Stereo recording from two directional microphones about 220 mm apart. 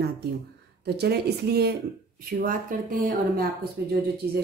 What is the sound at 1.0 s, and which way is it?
Speech, 45° right (ahead or behind).